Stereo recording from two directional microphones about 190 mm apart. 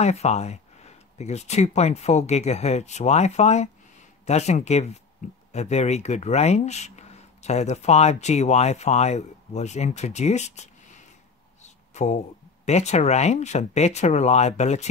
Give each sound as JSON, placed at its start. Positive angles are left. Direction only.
{"t": 0.0, "sound": "speech", "side_deg": 35}
{"t": 11.6, "sound": "a sound", "side_deg": 35}
{"t": 12.6, "sound": "speech", "side_deg": 35}